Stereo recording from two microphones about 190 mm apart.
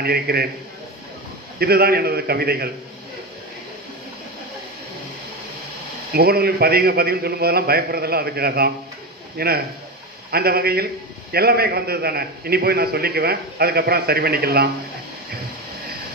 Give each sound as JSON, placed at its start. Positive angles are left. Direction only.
{"t": 0.0, "sound": "a man's voice", "side_deg": -55}
{"t": 1.6, "sound": "a man's voice", "side_deg": -55}
{"t": 6.1, "sound": "a man's voice", "side_deg": -55}